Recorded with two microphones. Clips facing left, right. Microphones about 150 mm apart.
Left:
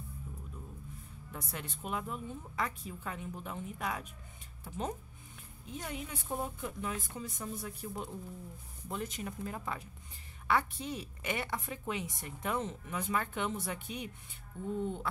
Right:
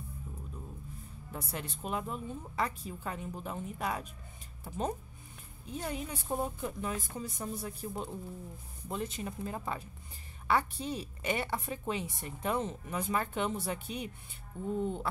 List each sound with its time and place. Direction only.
1.3 s a woman's voice: 35° right (ahead or behind)
14.8 s a woman's voice: 40° right (ahead or behind)